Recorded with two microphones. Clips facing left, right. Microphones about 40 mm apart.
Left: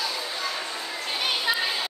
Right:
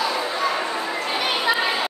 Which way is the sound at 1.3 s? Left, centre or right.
Right.